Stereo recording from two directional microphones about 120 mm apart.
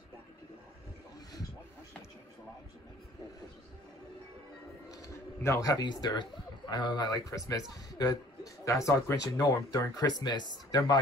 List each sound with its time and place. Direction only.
4.9 s bird: 25° left (ahead or behind)
6.7 s a man's voice: 35° left (ahead or behind)